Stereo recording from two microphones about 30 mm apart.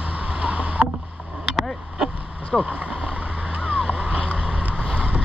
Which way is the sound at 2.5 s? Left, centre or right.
Centre.